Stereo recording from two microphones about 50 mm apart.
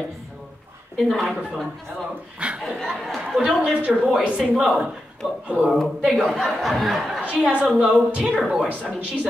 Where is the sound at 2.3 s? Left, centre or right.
Right.